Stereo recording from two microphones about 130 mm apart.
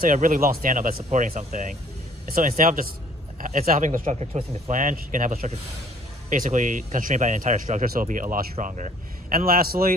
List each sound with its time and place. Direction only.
0.0 s speech: 90° right; by 1.7 s 70° right (ahead or behind)
2.3 s speech: 90° right; by 4.5 s 55° right (ahead or behind)
4.6 s speech: 85° right; by 5.6 s 60° right (ahead or behind)
6.3 s speech: 75° right (ahead or behind)